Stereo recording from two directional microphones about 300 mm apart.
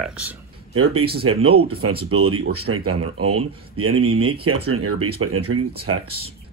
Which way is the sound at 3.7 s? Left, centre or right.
Right.